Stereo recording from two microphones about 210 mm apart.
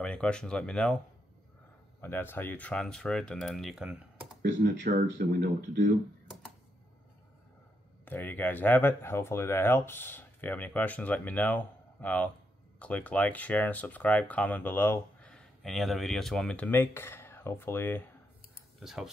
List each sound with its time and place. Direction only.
0.0 s speech: 5° left (ahead or behind)
2.0 s speech: 10° left (ahead or behind)
4.4 s speech: 45° right (ahead or behind)
8.0 s speech: 10° left (ahead or behind)
18.8 s speech: centre (ahead or behind)